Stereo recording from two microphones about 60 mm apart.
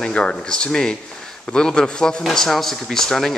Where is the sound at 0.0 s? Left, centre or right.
Centre.